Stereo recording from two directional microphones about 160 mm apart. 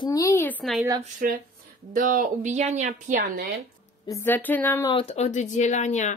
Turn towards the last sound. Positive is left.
turn(degrees=45)  # may be behind; listen again after turning